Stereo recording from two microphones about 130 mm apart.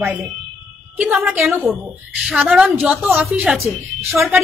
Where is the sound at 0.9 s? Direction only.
10° right (ahead or behind).